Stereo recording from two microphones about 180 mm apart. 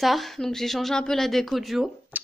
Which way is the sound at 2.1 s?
10° right (ahead or behind).